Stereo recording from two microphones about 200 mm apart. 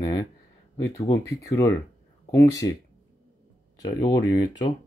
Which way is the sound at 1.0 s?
15° left (ahead or behind).